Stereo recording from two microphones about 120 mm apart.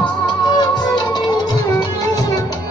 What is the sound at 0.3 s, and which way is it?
Music, 35° left (ahead or behind).